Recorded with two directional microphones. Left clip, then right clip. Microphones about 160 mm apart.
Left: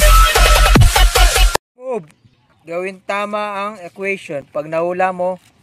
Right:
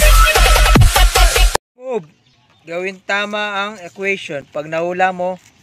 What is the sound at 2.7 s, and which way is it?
Speech, 10° left (ahead or behind).